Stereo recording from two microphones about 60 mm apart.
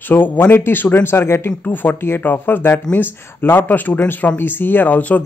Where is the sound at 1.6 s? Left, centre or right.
Left.